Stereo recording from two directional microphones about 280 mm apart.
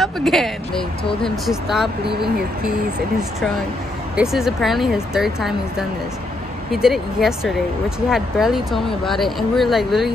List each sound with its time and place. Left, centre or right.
0.0 s speech: centre
3.2 s speech: centre